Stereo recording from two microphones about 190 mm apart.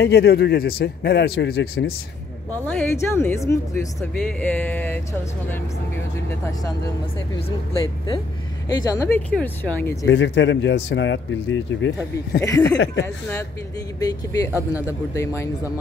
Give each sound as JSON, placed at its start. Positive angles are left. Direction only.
{"t": 0.0, "sound": "a man's voice", "side_deg": 60}
{"t": 2.5, "sound": "speech", "side_deg": 10}
{"t": 8.6, "sound": "speech", "side_deg": 20}
{"t": 10.0, "sound": "speech", "side_deg": 70}
{"t": 12.4, "sound": "speech", "side_deg": 15}
{"t": 12.6, "sound": "speech", "side_deg": 70}
{"t": 13.0, "sound": "speech", "side_deg": 15}